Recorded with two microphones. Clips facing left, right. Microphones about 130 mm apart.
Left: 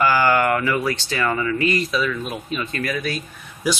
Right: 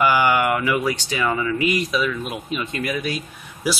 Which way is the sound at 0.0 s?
15° right (ahead or behind).